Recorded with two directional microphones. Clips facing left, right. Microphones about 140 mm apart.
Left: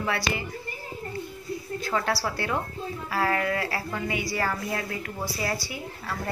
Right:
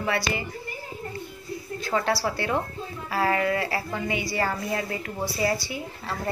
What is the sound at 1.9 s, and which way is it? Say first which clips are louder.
A woman's voice: right 3 dB; 15° right (ahead or behind).